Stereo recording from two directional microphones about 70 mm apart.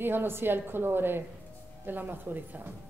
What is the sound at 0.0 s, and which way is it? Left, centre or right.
A woman's voice, right.